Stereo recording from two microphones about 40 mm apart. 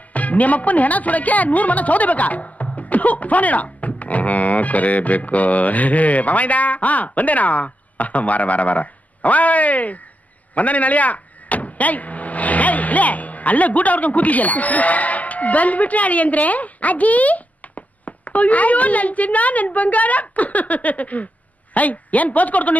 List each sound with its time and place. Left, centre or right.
0.1 s speech: left